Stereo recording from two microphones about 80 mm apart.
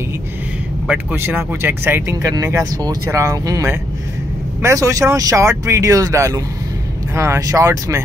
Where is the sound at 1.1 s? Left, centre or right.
Right.